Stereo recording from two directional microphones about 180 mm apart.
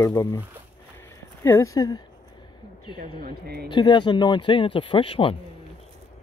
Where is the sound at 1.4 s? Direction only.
15° left (ahead or behind).